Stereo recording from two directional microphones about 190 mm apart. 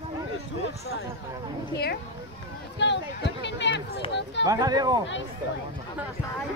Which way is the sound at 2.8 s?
65° left (ahead or behind).